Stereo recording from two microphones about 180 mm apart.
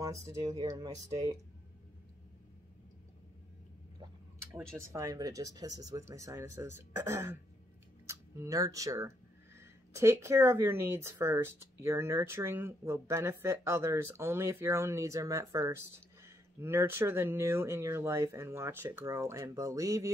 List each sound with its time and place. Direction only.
0.0 s speech: 20° right (ahead or behind)
4.0 s speech: 15° right (ahead or behind)